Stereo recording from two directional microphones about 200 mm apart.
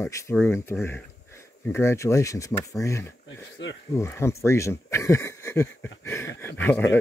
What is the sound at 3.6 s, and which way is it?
Speech, 65° left (ahead or behind).